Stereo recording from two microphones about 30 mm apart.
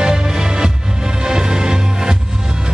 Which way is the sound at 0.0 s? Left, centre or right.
Right.